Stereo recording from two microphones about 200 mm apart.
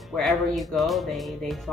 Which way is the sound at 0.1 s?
Centre (ahead or behind).